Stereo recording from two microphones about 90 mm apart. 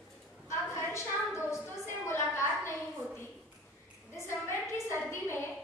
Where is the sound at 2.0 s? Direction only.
30° left (ahead or behind).